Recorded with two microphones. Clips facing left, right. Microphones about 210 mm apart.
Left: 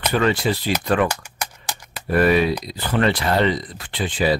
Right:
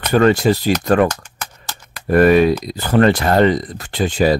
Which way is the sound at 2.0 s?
45° right (ahead or behind).